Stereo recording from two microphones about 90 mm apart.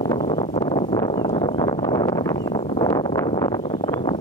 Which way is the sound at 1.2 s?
60° left (ahead or behind).